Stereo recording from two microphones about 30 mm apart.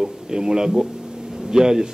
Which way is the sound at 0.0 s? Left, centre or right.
Right.